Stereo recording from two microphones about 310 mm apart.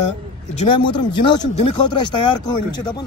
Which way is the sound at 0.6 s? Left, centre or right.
Centre.